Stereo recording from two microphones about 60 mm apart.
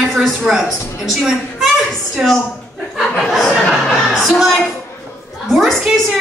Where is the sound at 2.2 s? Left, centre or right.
Centre.